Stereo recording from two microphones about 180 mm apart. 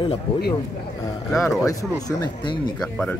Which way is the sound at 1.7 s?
20° left (ahead or behind).